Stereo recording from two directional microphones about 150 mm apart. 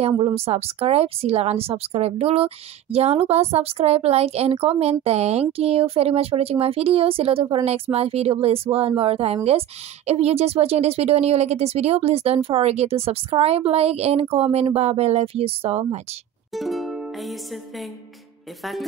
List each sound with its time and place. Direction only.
0.2 s a woman's voice: 40° right (ahead or behind)
16.5 s music: centre (ahead or behind)
18.6 s speech: centre (ahead or behind)